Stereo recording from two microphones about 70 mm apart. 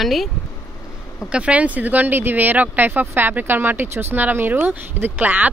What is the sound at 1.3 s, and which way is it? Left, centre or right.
Speech, centre.